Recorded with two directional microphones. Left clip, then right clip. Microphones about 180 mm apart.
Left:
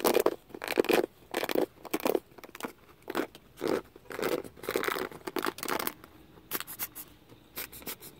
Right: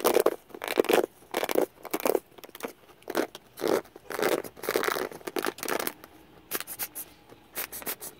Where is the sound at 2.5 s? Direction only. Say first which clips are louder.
Right 2 dB; 5° left (ahead or behind).